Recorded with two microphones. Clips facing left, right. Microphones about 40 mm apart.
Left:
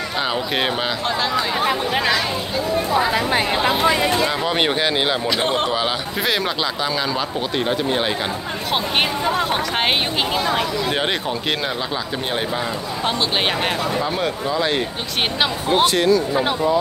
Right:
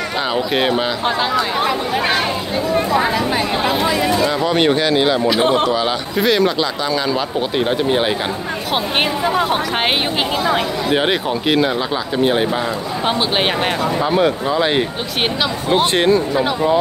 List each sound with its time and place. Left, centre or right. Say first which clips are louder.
0.3 s a man's voice: right 6 dB; centre
4.5 s speech: right 4 dB; centre
5.2 s a man's voice: right 5 dB; centre
7.2 s speech: right 4 dB; centre
9.2 s speech: right 3 dB; centre
14.0 s speech: right 6 dB; centre
15.8 s speech: right 1 dB; right